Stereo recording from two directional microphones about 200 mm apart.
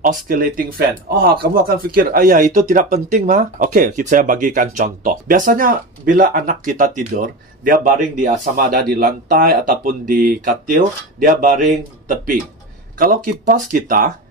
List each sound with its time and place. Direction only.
0.0 s speech: 45° right (ahead or behind)